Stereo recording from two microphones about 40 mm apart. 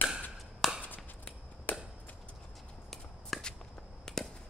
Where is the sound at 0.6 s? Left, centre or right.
Centre.